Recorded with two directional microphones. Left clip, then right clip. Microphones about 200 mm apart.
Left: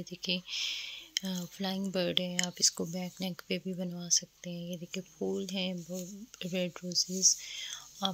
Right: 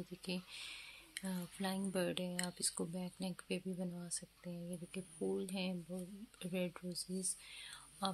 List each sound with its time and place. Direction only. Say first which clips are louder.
0.1 s speech: left 15 dB; 30° left (ahead or behind)
6.9 s speech: left 17 dB; 10° left (ahead or behind)
7.4 s whispering: left 11 dB; 25° left (ahead or behind)